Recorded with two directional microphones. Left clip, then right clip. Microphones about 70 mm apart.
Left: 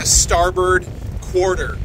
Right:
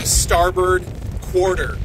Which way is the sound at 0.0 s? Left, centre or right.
Right.